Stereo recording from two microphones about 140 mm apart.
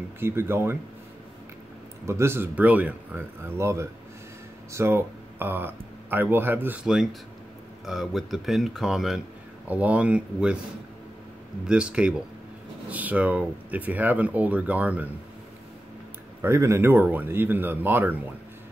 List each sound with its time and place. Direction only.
0.2 s speech: 15° right (ahead or behind)
2.0 s speech: 20° right (ahead or behind)
11.6 s speech: 5° right (ahead or behind)
16.3 s speech: 20° right (ahead or behind)